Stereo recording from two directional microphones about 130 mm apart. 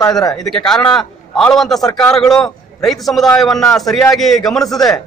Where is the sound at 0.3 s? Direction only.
5° left (ahead or behind).